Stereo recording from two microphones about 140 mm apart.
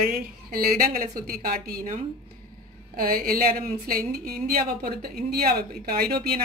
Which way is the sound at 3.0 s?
90° right.